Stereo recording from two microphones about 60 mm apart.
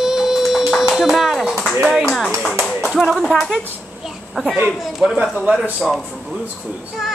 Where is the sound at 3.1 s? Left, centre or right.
Centre.